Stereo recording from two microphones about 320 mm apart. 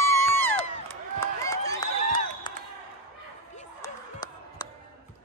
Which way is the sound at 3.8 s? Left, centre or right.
Centre.